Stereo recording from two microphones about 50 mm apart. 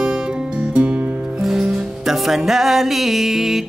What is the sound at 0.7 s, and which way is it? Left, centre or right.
Music, right.